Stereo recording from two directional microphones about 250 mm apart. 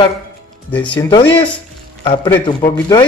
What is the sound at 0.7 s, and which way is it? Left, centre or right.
Speech, centre.